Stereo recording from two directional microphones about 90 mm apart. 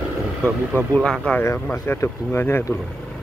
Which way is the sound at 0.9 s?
10° left (ahead or behind).